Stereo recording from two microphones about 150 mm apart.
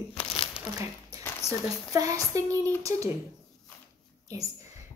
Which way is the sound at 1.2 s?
15° left (ahead or behind).